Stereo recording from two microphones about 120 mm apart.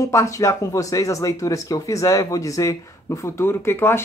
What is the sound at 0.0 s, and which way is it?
Speech, 25° left (ahead or behind).